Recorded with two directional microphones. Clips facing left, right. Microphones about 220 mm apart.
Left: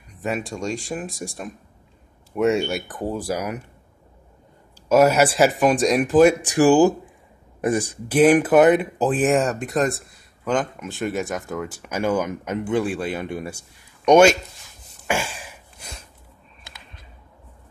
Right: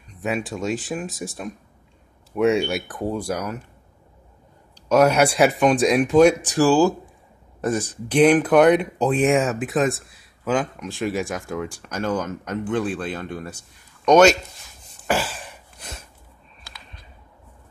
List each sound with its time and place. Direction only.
0.2 s speech: centre (ahead or behind)
4.8 s speech: 5° left (ahead or behind)
6.4 s speech: 15° left (ahead or behind)
15.0 s a sound: centre (ahead or behind)